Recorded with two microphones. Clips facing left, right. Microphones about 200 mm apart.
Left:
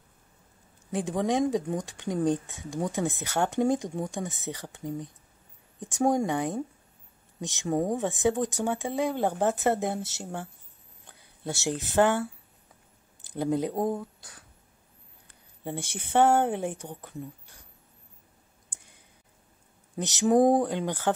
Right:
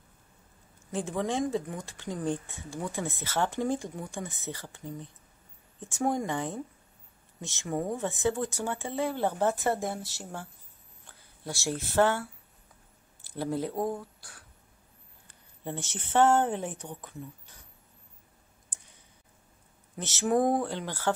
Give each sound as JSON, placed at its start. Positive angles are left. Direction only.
{"t": 0.9, "sound": "speech", "side_deg": 15}
{"t": 15.6, "sound": "speech", "side_deg": 10}
{"t": 20.0, "sound": "speech", "side_deg": 15}